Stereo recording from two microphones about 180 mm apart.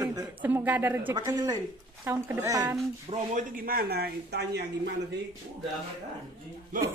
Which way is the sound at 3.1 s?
50° right (ahead or behind).